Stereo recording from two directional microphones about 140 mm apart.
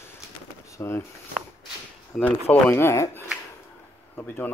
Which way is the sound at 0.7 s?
20° left (ahead or behind).